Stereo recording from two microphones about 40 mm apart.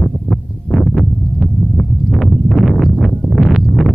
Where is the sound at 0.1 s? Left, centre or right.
Centre.